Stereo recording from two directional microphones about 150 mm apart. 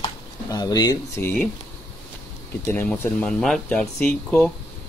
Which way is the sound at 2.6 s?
15° left (ahead or behind).